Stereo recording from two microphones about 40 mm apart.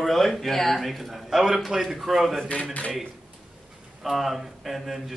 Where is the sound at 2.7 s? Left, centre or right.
Left.